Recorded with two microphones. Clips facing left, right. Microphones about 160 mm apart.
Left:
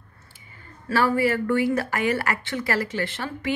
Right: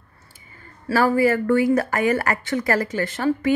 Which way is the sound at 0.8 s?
40° right (ahead or behind).